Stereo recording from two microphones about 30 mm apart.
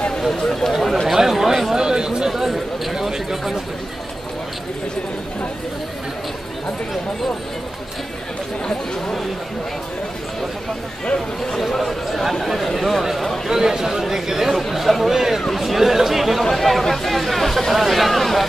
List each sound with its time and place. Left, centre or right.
0.3 s speech: centre
1.0 s chatter: centre
1.8 s chatter: right
2.2 s a sound: centre
11.8 s a sound: centre
13.5 s a man's voice: centre
14.5 s speech: centre
16.4 s speech: centre
16.9 s a sound: centre
17.7 s speech: centre